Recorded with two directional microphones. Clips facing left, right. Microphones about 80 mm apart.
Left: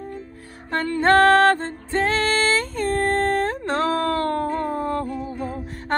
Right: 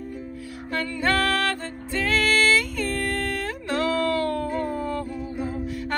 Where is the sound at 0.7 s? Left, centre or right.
Left.